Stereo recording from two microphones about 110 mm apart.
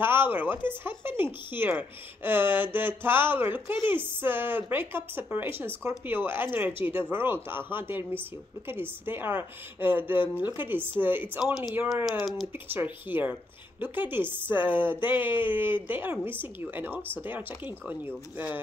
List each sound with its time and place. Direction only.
0.0 s speech: 20° right (ahead or behind)
12.1 s speech: centre (ahead or behind)
12.5 s speech: 20° right (ahead or behind)